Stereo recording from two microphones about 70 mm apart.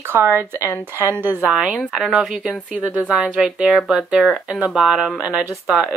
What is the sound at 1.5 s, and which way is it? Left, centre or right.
Speech, centre.